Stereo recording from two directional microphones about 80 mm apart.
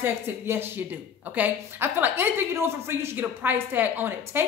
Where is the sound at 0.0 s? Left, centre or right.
Right.